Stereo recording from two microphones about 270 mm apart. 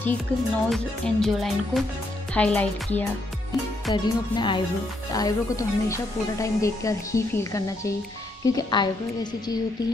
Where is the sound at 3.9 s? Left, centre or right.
Centre.